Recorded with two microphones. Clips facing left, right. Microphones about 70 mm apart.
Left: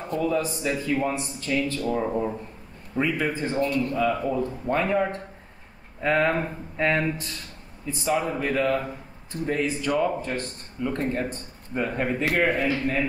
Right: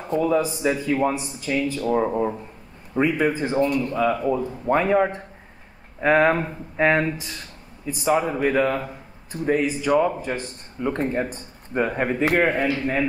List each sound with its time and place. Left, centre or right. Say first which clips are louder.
0.3 s speech: right 4 dB; centre
1.9 s a man's voice: right 7 dB; right
5.9 s a man's voice: right 5 dB; right
10.8 s a man's voice: right 3 dB; right
11.1 s a man's voice: right 2 dB; centre